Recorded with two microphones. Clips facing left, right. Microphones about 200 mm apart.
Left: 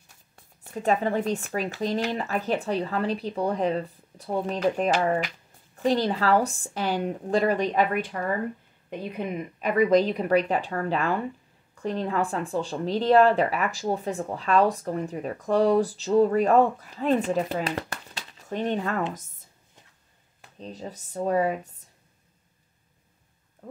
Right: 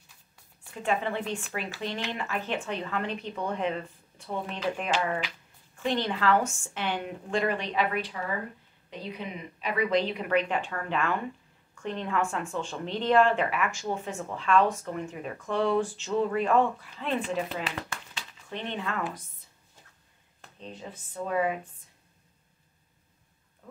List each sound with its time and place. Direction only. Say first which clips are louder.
0.4 s speech: left 7 dB; 40° left (ahead or behind)
20.5 s speech: left 4 dB; 40° left (ahead or behind)
23.6 s frog: left 8 dB; 45° left (ahead or behind)